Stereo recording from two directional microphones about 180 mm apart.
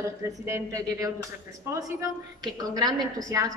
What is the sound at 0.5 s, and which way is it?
A woman's voice, 15° right (ahead or behind).